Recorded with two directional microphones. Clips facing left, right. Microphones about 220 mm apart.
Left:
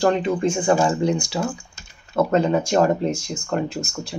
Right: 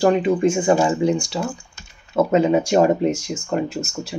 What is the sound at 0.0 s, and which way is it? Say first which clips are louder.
Speech: right 3 dB; 10° right (ahead or behind).